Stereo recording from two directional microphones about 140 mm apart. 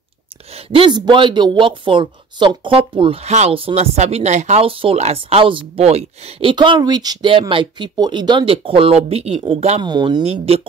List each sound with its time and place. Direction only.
0.7 s speech: 35° right (ahead or behind)
6.5 s speech: 35° right (ahead or behind)
9.8 s speech: 30° right (ahead or behind)
10.2 s speech: 45° right (ahead or behind)